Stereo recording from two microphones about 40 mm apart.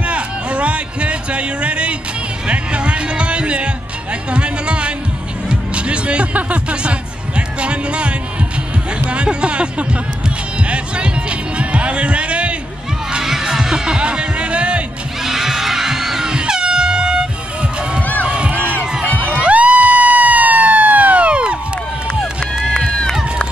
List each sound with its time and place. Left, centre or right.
0.0 s music: right
9.0 s speech: right
10.7 s music: right
13.2 s music: centre; by 14.8 s right
15.2 s music: centre
16.3 s air horn: centre
18.2 s crowd: right
22.8 s run: centre
23.1 s run: centre